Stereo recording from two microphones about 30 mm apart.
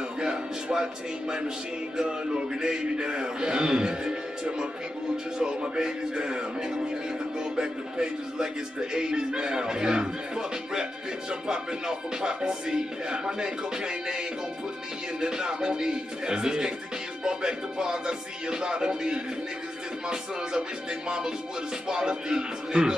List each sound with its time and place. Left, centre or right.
0.2 s a sound: right
2.0 s speech: right
21.8 s speech: right